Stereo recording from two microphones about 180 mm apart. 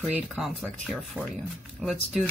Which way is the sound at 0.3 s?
5° right (ahead or behind).